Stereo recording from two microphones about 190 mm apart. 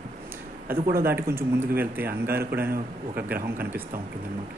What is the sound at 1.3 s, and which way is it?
Speech, 10° right (ahead or behind).